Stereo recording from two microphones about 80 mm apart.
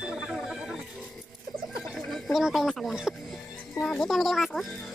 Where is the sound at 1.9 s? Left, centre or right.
Centre.